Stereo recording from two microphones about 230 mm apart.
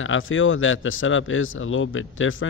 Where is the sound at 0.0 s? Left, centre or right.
Left.